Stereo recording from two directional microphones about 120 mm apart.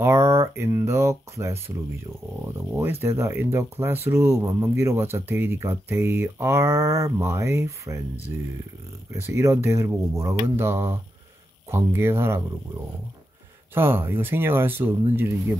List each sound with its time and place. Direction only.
0.0 s speech: 25° right (ahead or behind)
2.7 s speech: 20° right (ahead or behind)
13.7 s speech: 20° right (ahead or behind)